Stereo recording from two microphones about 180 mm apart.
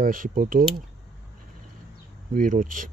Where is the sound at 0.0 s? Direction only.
50° right (ahead or behind).